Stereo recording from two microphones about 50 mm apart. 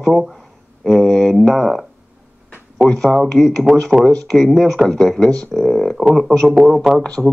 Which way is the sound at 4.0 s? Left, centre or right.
Centre.